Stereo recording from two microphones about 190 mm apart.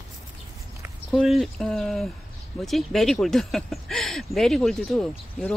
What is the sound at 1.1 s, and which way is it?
Speech, centre (ahead or behind).